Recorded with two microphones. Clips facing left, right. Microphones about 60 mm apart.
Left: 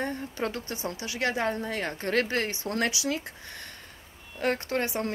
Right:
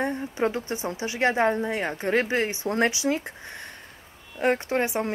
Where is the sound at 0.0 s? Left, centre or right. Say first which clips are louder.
Right 5 dB; centre.